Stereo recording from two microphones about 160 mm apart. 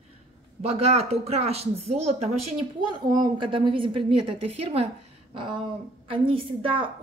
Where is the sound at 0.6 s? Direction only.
40° right (ahead or behind).